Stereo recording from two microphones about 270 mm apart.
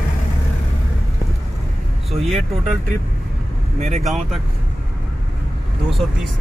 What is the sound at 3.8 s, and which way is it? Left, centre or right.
Speech, right.